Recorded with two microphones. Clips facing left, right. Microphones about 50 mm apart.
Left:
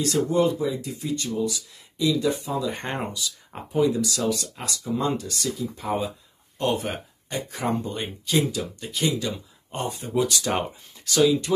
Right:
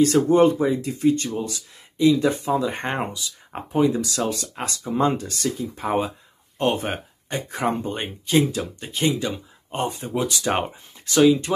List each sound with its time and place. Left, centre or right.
0.0 s speech: right